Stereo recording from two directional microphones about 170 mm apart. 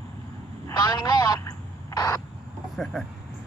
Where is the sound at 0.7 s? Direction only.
25° left (ahead or behind).